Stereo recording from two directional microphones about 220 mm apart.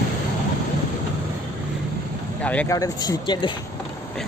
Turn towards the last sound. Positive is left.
turn(degrees=20)  # may be behind; listen again after turning